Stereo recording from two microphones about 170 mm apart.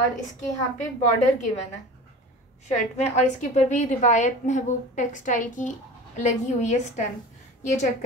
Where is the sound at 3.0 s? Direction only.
40° left (ahead or behind).